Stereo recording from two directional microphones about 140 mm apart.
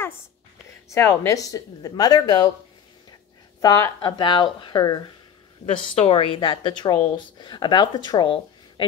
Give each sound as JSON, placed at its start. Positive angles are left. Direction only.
{"t": 0.8, "sound": "speech", "side_deg": 20}
{"t": 3.6, "sound": "speech", "side_deg": 25}
{"t": 5.9, "sound": "speech", "side_deg": 45}